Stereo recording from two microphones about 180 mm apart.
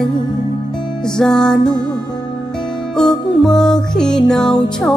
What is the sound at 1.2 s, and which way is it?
Music, 5° left (ahead or behind).